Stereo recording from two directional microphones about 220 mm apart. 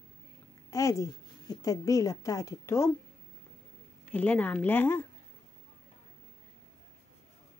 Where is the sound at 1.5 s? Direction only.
15° left (ahead or behind).